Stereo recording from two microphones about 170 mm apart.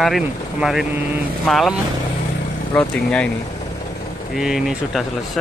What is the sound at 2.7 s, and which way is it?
Speech, 5° left (ahead or behind).